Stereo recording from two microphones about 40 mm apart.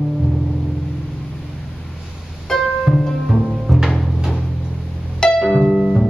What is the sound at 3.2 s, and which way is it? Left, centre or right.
Music, centre.